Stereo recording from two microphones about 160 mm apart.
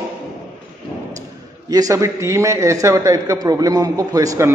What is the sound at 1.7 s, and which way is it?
A man's voice, 20° right (ahead or behind).